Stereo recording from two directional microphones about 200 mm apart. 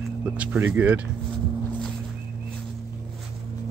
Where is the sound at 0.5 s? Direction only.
10° right (ahead or behind).